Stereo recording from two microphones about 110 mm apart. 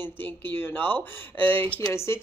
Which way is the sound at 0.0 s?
20° left (ahead or behind).